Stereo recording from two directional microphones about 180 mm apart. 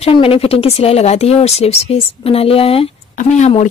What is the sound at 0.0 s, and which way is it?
Speech, 30° left (ahead or behind).